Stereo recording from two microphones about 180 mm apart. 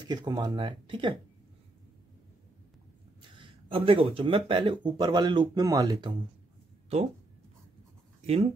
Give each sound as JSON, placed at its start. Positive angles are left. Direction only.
{"t": 0.0, "sound": "speech", "side_deg": -25}
{"t": 3.2, "sound": "speech", "side_deg": -25}
{"t": 8.2, "sound": "speech", "side_deg": -40}